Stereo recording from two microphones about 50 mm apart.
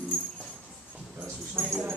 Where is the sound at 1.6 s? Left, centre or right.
Right.